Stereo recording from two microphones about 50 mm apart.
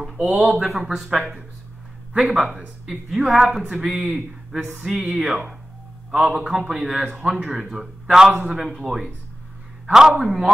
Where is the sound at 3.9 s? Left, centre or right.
Right.